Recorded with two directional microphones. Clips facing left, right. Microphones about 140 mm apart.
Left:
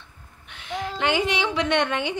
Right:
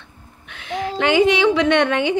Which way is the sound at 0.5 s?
90° right.